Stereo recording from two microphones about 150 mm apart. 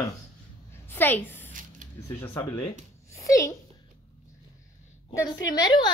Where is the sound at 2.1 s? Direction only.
20° left (ahead or behind).